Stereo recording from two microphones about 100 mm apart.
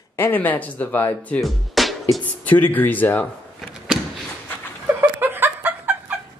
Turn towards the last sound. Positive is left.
turn(degrees=-20)  # may be behind; listen again after turning